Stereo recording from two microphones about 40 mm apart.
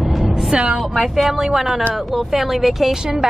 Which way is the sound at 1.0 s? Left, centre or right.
Centre.